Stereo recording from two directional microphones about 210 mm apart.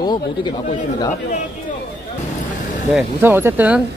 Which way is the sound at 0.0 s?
20° left (ahead or behind).